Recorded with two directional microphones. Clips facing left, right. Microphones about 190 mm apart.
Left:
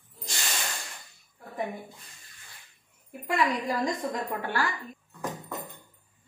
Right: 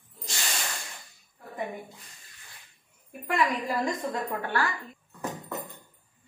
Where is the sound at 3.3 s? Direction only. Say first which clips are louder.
Even; 15° left (ahead or behind).